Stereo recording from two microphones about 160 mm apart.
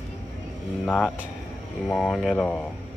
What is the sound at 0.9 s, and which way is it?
Speech, 5° left (ahead or behind).